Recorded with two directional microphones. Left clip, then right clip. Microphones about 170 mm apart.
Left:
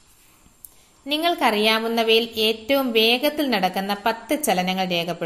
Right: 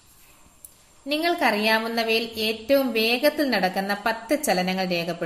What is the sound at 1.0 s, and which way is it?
A woman's voice, 20° left (ahead or behind).